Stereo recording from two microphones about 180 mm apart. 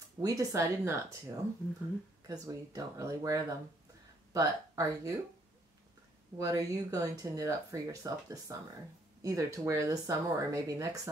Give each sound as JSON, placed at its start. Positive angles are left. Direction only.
{"t": 0.2, "sound": "speech", "side_deg": -20}
{"t": 6.3, "sound": "speech", "side_deg": -20}